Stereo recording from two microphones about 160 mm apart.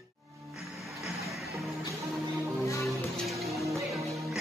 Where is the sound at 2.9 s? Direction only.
Centre (ahead or behind).